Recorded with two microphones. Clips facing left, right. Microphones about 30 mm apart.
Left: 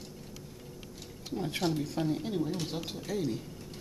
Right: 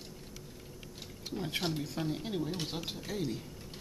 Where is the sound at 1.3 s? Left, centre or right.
Centre.